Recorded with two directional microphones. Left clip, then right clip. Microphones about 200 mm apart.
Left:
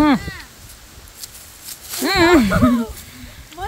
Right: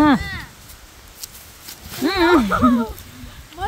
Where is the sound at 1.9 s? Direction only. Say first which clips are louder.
Left 2 dB; 25° left (ahead or behind).